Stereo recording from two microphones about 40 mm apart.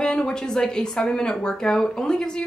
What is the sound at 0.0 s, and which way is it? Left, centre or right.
Speech, centre.